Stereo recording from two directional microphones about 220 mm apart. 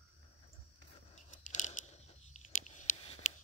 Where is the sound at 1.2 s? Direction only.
35° left (ahead or behind).